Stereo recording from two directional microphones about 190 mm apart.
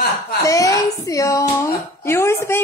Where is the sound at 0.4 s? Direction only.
15° left (ahead or behind).